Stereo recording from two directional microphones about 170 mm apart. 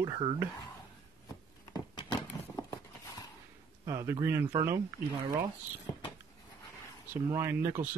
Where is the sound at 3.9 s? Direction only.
20° right (ahead or behind).